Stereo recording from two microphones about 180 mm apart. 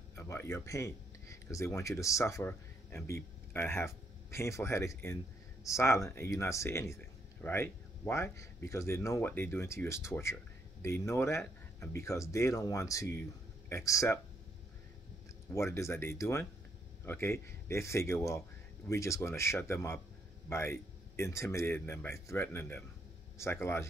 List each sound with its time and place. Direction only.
0.1 s a sound: 15° left (ahead or behind)
1.5 s speech: 15° left (ahead or behind)
15.5 s speech: 15° left (ahead or behind)